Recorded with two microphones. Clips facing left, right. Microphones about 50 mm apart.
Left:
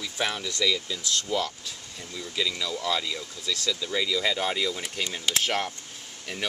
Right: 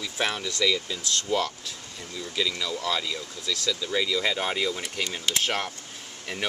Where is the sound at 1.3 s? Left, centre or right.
Centre.